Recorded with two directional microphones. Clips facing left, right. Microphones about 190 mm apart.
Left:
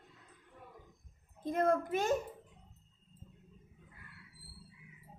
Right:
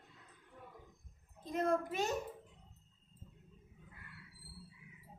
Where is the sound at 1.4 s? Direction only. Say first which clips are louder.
Left 4 dB; 50° left (ahead or behind).